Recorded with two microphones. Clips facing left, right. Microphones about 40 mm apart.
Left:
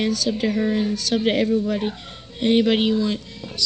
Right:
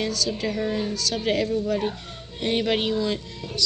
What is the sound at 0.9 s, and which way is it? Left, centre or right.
A woman's voice, left.